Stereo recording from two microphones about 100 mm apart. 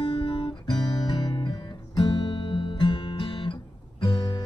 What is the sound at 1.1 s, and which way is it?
Music, 50° left (ahead or behind).